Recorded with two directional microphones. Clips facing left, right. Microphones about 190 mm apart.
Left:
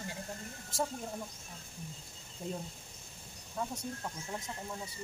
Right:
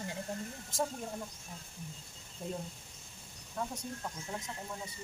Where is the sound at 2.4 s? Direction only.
Centre (ahead or behind).